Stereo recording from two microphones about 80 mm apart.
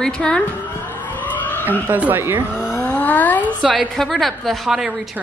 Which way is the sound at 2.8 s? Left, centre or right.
Centre.